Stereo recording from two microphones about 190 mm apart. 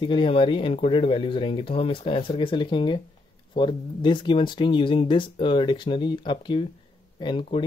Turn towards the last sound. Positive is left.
turn(degrees=25)  # may be behind; listen again after turning